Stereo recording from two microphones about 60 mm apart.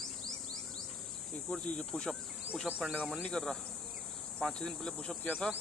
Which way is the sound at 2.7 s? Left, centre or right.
Centre.